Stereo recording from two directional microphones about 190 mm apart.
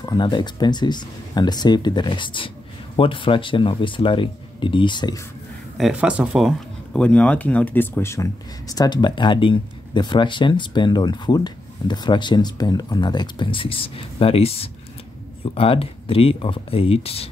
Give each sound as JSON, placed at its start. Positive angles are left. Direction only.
{"t": 0.0, "sound": "speech", "side_deg": 25}
{"t": 5.8, "sound": "speech", "side_deg": -5}